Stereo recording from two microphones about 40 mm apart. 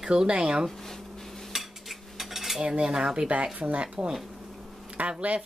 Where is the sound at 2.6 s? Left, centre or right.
Right.